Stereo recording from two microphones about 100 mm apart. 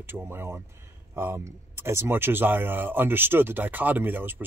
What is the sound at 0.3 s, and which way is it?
Speech, 25° right (ahead or behind).